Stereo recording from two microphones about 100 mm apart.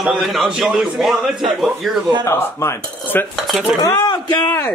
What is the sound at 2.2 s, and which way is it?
Speech, 25° left (ahead or behind).